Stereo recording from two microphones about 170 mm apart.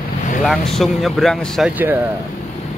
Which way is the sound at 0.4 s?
Centre (ahead or behind).